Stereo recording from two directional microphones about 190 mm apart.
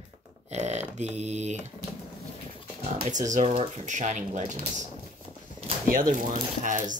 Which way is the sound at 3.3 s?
35° right (ahead or behind).